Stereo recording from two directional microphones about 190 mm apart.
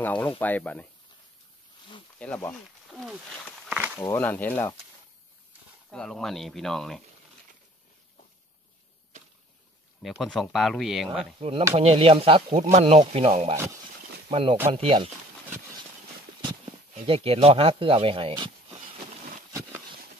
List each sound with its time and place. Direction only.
0.0 s speech: 10° left (ahead or behind)
2.1 s speech: 5° left (ahead or behind)
3.6 s a sound: 10° right (ahead or behind)
4.0 s speech: 10° left (ahead or behind)
5.9 s speech: centre (ahead or behind)
10.0 s speech: centre (ahead or behind)
11.3 s speech: 30° right (ahead or behind)
16.9 s speech: 30° right (ahead or behind)